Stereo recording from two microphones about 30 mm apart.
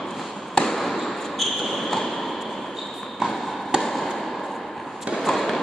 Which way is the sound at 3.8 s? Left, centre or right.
Centre.